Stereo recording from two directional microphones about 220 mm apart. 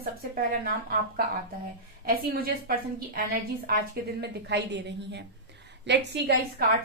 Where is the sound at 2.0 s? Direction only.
40° right (ahead or behind).